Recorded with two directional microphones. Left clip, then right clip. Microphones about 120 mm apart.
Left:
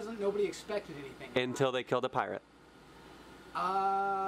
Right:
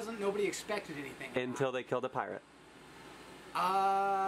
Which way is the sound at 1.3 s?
25° left (ahead or behind).